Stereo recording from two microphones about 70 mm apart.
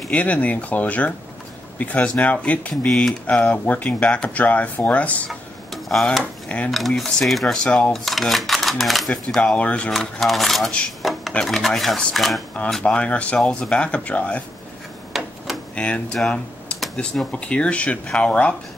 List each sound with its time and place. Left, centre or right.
0.1 s speech: centre
2.9 s speech: centre
5.3 s a sound: centre
6.5 s speech: centre
7.0 s speech: centre
9.4 s speech: centre
9.8 s dishes: centre
11.4 s speech: centre
12.8 s speech: centre
13.4 s speech: centre
15.1 s a sound: centre
15.7 s speech: centre